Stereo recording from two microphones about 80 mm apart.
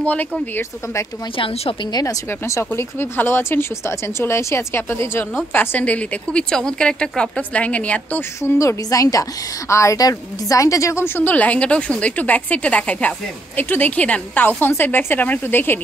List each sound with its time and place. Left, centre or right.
0.0 s speech: centre
1.3 s a woman's voice: left
2.2 s speech: left; by 8.2 s centre
8.2 s speech: left
8.5 s a woman's voice: left
11.1 s speech: centre